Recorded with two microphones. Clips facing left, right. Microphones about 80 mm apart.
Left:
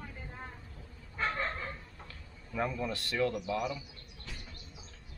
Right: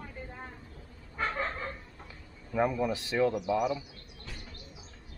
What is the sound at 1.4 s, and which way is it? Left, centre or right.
Dog, centre.